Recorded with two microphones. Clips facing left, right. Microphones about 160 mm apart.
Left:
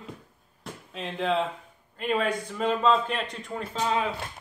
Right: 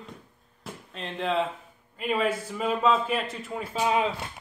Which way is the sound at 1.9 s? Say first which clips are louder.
Even; 5° right (ahead or behind).